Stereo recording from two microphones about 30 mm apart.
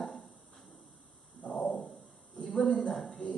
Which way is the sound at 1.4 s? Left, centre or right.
Left.